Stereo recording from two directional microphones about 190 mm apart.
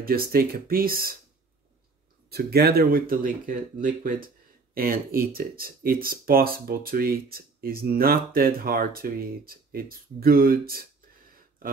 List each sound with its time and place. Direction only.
0.0 s speech: 50° right (ahead or behind)
2.2 s speech: 55° right (ahead or behind)